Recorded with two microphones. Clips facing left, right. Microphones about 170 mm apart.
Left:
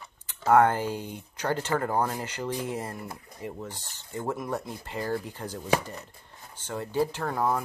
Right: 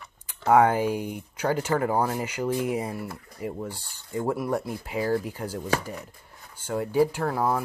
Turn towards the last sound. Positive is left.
turn(degrees=-5)  # may be behind; listen again after turning